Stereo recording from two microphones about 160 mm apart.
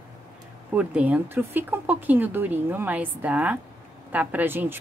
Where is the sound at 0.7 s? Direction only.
10° right (ahead or behind).